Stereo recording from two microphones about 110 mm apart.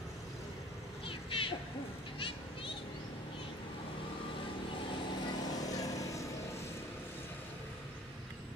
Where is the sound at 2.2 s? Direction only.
50° left (ahead or behind).